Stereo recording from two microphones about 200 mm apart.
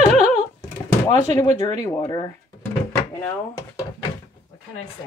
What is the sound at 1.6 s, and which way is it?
Speech, 20° left (ahead or behind).